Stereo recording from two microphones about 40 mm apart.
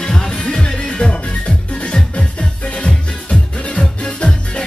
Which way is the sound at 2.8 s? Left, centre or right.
Left.